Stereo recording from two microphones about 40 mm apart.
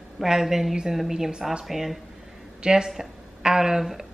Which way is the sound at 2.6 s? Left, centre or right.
Centre.